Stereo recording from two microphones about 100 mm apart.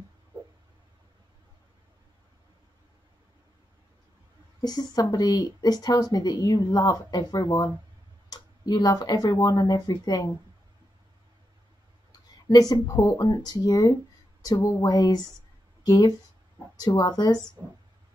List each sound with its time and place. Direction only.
4.6 s a woman's voice: 40° left (ahead or behind)
12.4 s speech: 40° left (ahead or behind)
17.6 s speech: 30° right (ahead or behind)